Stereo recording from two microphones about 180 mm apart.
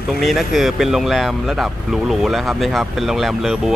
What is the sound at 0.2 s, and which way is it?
Speech, centre (ahead or behind).